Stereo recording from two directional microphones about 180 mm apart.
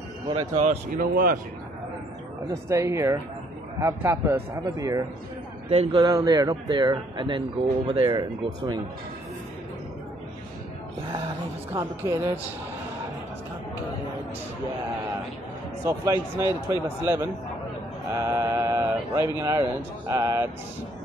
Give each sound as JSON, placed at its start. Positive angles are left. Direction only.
{"t": 0.3, "sound": "speech", "side_deg": -35}
{"t": 1.1, "sound": "speech", "side_deg": -55}
{"t": 2.7, "sound": "speech", "side_deg": -15}
{"t": 11.7, "sound": "speech", "side_deg": -15}
{"t": 15.8, "sound": "speech", "side_deg": -15}